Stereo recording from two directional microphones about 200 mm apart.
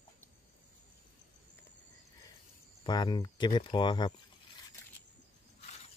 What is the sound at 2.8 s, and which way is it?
Speech, 20° left (ahead or behind).